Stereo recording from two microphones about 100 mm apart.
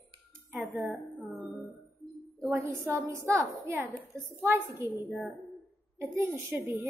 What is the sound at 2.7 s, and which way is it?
A woman's voice, 25° right (ahead or behind).